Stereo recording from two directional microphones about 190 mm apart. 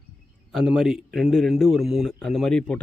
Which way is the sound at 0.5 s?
5° right (ahead or behind).